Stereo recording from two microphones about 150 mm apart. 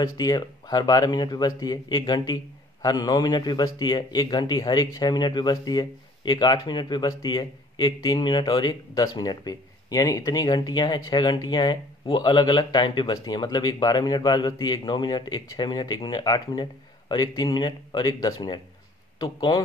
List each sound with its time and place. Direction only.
0.2 s speech: 25° left (ahead or behind)